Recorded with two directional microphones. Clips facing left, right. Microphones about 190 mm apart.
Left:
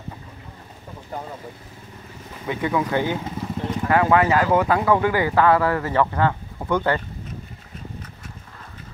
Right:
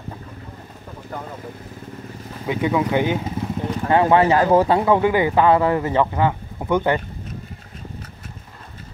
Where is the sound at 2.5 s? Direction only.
20° right (ahead or behind).